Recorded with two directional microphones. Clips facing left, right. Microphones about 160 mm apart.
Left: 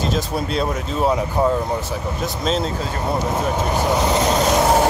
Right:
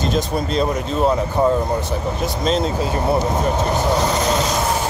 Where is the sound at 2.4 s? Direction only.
Centre (ahead or behind).